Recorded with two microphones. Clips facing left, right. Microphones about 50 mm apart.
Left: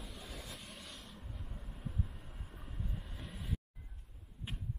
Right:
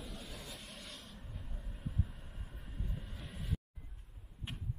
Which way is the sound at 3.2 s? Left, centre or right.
Centre.